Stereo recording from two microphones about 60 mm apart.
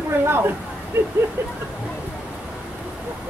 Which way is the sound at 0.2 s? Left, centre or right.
Right.